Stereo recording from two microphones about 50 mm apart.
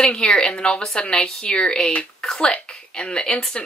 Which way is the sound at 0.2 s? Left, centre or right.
Centre.